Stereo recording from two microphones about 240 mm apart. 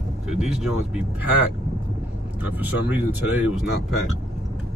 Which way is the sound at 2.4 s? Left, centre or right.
Centre.